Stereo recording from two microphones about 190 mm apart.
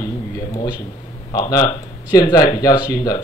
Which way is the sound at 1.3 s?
20° left (ahead or behind).